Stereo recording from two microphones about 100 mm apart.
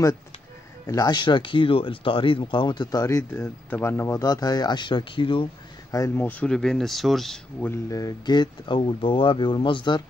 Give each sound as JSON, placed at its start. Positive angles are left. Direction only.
{"t": 0.8, "sound": "speech", "side_deg": 40}
{"t": 3.7, "sound": "speech", "side_deg": 25}
{"t": 5.9, "sound": "speech", "side_deg": 35}
{"t": 6.1, "sound": "speech", "side_deg": 20}
{"t": 7.9, "sound": "speech", "side_deg": 40}